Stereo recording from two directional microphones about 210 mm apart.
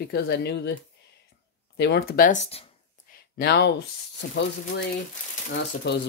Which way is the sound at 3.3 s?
50° left (ahead or behind).